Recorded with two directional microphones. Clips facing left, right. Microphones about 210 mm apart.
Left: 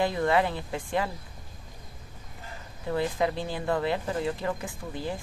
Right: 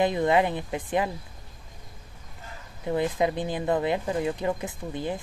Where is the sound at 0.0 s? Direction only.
20° right (ahead or behind).